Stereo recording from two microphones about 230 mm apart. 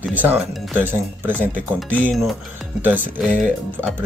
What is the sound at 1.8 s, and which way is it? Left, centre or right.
Speech, centre.